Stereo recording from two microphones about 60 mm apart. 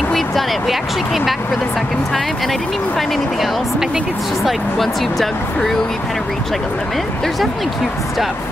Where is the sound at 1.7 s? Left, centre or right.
Centre.